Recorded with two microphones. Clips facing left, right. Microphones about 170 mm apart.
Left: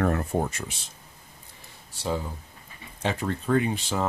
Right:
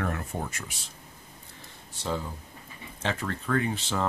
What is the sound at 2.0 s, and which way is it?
Speech, 10° left (ahead or behind).